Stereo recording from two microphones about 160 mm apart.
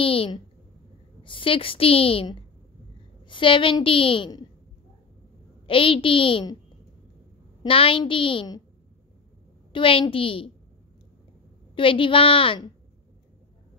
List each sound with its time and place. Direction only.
0.0 s a woman's voice: 35° left (ahead or behind)
5.7 s a woman's voice: 35° left (ahead or behind)
7.6 s a woman's voice: 35° left (ahead or behind)
9.7 s a woman's voice: 35° left (ahead or behind)
11.7 s a woman's voice: 35° left (ahead or behind)